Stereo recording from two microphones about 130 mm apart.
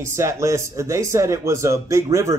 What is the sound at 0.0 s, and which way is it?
Speech, 20° right (ahead or behind).